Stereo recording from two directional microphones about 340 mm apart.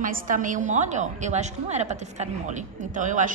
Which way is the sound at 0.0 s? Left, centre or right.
Right.